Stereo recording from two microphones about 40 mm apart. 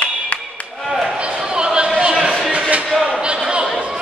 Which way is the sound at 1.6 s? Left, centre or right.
Right.